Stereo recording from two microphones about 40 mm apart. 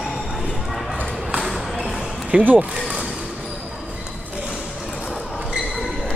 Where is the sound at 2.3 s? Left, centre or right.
Right.